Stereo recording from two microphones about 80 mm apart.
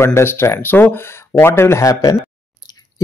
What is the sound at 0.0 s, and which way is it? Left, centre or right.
Speech, left.